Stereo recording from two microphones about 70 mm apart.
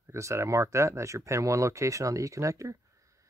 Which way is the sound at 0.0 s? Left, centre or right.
Right.